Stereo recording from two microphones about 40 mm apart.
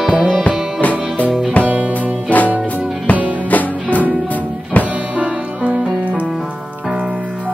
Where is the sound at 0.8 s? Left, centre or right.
Left.